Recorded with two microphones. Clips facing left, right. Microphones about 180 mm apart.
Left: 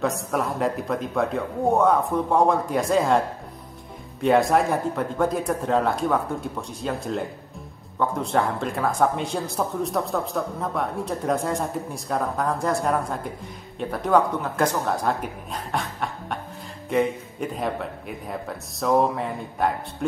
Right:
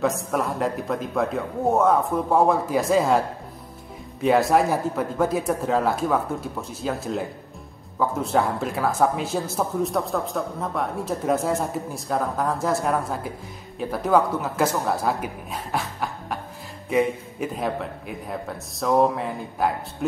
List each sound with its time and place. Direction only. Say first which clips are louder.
0.0 s speech: right 1 dB; centre (ahead or behind)